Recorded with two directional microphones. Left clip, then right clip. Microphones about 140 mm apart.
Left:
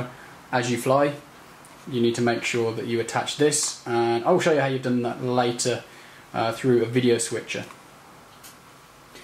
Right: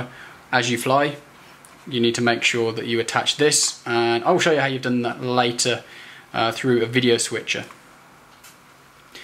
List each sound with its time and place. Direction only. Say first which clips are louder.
0.5 s speech: right 3 dB; 40° right (ahead or behind)